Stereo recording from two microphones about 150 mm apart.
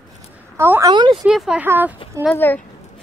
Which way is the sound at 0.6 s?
15° right (ahead or behind).